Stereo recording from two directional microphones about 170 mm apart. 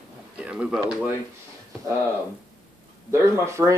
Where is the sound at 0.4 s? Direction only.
5° right (ahead or behind).